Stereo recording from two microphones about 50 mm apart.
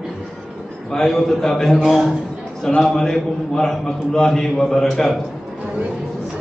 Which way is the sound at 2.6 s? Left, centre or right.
Centre.